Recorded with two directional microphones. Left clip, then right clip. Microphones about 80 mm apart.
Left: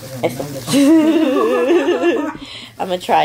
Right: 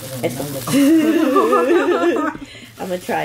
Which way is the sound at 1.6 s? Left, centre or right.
Centre.